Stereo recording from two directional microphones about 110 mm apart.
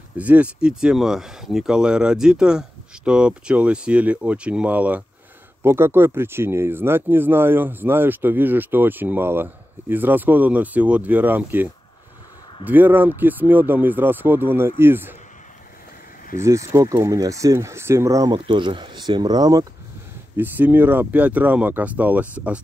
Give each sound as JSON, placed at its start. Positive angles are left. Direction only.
{"t": 0.2, "sound": "speech", "side_deg": -15}
{"t": 16.3, "sound": "speech", "side_deg": -25}
{"t": 20.3, "sound": "speech", "side_deg": -15}